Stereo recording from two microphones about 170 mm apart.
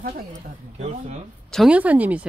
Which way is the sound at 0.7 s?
40° right (ahead or behind).